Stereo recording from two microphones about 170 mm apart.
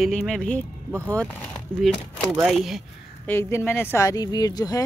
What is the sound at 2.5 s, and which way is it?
Speech, centre (ahead or behind).